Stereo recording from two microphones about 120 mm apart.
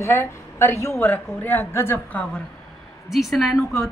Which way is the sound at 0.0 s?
20° left (ahead or behind).